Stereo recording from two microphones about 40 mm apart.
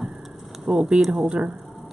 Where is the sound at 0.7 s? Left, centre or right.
Right.